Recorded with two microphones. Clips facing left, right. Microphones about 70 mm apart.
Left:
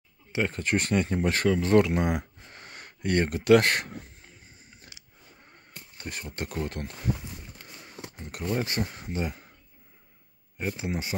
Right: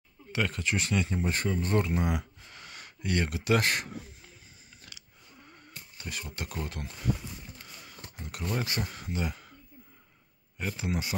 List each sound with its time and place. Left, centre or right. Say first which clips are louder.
0.3 s speech: left 3 dB; left
0.6 s speech: left 4 dB; left
4.8 s a sound: right 1 dB; left
5.7 s speech: left 2 dB; left
7.6 s a sound: left 2 dB; left
8.5 s speech: left 4 dB; left
10.6 s speech: left 2 dB; left